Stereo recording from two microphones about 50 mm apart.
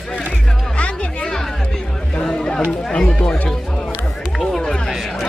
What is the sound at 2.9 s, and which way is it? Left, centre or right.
Chatter, centre.